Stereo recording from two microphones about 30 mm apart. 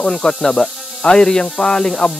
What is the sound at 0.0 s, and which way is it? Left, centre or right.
Speech, centre.